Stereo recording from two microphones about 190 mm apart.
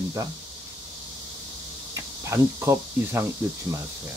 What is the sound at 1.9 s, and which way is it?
Speech, 15° right (ahead or behind).